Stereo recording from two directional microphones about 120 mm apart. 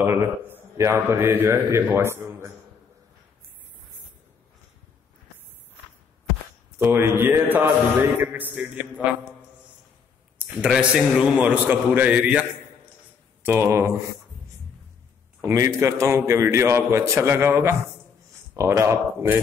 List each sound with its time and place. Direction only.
0.0 s mantra: 20° right (ahead or behind)
1.5 s a man's voice: 20° right (ahead or behind)
6.8 s a man's voice: 20° right (ahead or behind)
10.4 s a man's voice: 10° right (ahead or behind)
15.4 s a man's voice: 25° right (ahead or behind)